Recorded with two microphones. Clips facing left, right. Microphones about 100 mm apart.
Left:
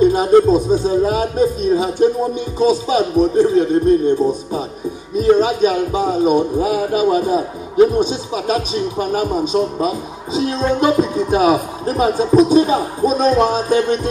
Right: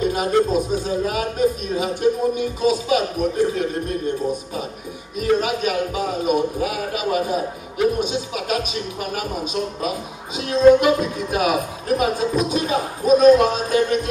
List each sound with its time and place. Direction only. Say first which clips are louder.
0.0 s a man's voice: left 8 dB; 30° left (ahead or behind)
5.1 s a man's voice: left 6 dB; 30° left (ahead or behind)